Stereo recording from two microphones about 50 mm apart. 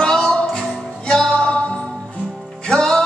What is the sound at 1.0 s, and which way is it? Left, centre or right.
Music, centre.